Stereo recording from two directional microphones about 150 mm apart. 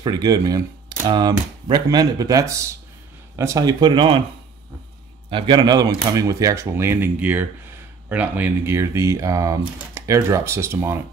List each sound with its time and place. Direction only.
0.0 s speech: 25° right (ahead or behind)
5.3 s speech: 30° right (ahead or behind); by 11.0 s 15° right (ahead or behind)